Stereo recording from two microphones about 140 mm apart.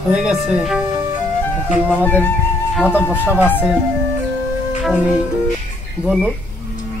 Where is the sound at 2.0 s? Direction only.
15° left (ahead or behind).